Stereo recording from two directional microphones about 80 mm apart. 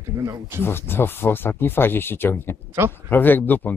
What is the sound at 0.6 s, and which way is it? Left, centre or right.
Speech, left.